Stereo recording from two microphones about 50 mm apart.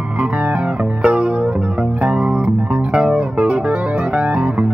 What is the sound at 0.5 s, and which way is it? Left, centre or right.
Music, right.